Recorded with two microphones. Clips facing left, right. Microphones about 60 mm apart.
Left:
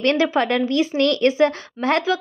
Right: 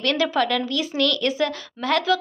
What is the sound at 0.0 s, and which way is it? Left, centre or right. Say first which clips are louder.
A woman's voice: left 3 dB; left.